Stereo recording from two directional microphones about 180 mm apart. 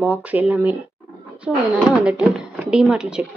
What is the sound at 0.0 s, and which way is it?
Speech, 10° right (ahead or behind).